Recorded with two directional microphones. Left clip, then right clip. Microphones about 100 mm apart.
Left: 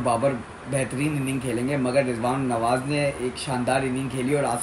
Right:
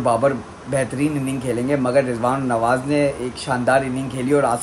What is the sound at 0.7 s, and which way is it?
Speech, 35° right (ahead or behind).